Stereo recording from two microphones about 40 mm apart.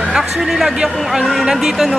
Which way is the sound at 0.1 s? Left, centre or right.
Centre.